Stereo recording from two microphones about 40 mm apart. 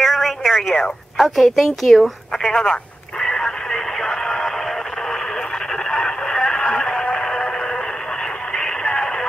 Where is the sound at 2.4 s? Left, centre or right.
Centre.